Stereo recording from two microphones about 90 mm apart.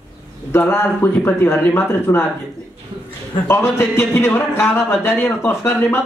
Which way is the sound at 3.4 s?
30° left (ahead or behind).